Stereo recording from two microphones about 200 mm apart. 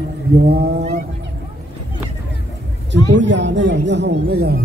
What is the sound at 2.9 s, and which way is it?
Speech, 65° right (ahead or behind).